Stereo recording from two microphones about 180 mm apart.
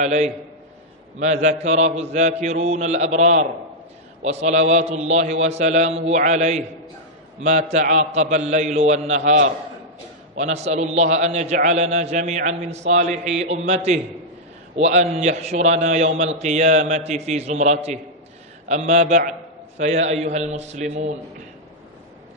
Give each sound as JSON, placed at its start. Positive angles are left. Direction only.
{"t": 0.0, "sound": "a man's voice", "side_deg": -40}
{"t": 10.3, "sound": "a man's voice", "side_deg": -40}